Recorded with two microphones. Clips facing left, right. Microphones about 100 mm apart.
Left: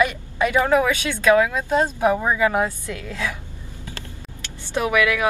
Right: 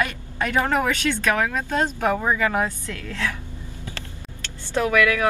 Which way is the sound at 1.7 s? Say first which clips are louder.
Left 5 dB; 15° left (ahead or behind).